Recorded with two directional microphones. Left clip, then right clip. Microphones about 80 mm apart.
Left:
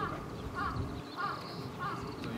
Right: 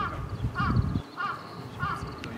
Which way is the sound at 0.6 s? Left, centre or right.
Right.